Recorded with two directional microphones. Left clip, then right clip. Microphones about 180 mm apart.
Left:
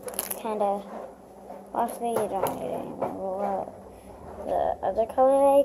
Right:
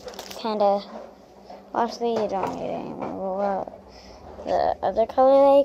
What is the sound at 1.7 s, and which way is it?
Speech, 45° right (ahead or behind).